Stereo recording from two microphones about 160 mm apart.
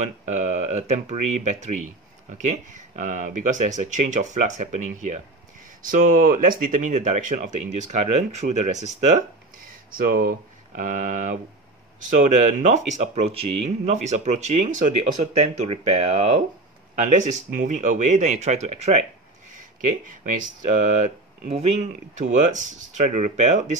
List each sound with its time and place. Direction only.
0.0 s speech: 45° right (ahead or behind)
9.8 s speech: 65° right (ahead or behind)
10.8 s speech: 55° right (ahead or behind)
15.7 s speech: 35° right (ahead or behind)
16.9 s speech: 50° right (ahead or behind)
20.2 s speech: 50° right (ahead or behind)